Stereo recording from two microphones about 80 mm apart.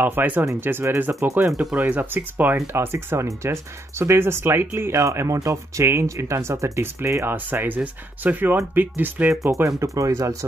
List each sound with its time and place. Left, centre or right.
0.0 s speech: right
9.4 s speech: right